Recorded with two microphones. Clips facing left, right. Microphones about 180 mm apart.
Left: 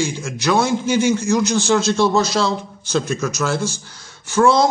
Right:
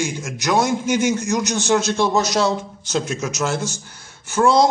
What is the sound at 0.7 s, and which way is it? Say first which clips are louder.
Speech: left 2 dB; 65° right (ahead or behind).